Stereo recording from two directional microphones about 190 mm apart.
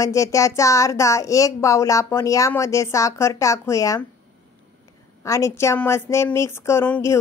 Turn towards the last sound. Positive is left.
turn(degrees=10)  # may be behind; listen again after turning